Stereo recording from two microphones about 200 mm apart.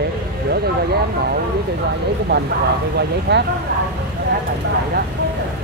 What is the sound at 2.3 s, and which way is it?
Speech, 60° right (ahead or behind).